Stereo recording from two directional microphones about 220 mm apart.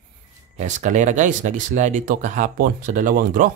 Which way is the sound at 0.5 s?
35° right (ahead or behind).